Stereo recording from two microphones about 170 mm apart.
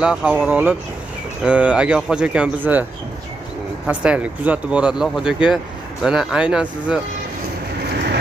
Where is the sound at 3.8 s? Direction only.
5° right (ahead or behind).